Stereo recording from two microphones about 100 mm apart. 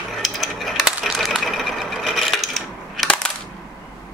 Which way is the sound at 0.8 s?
Centre (ahead or behind).